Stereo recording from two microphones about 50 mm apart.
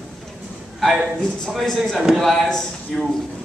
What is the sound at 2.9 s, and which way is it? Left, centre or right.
Speech, centre.